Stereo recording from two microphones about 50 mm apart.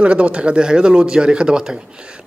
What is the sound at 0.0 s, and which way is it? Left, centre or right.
A man's voice, right.